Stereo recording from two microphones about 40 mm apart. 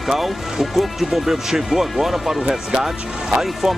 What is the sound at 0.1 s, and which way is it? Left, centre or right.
Speech, centre.